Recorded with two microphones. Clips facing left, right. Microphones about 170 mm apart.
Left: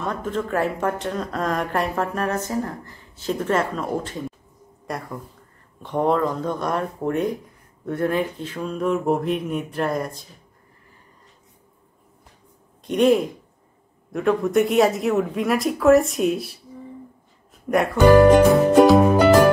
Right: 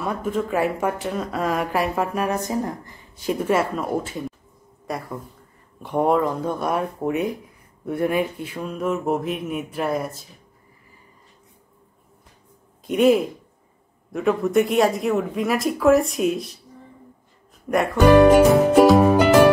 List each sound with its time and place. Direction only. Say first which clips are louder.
0.0 s speech: right 1 dB; 10° right (ahead or behind)
12.8 s speech: even; 5° right (ahead or behind)
17.6 s speech: left 1 dB; centre (ahead or behind)